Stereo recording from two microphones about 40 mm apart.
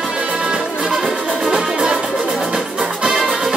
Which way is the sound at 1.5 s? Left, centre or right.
Right.